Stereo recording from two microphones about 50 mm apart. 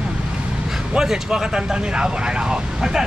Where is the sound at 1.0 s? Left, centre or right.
Centre.